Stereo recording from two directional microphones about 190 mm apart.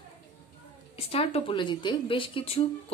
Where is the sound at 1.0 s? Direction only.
30° left (ahead or behind).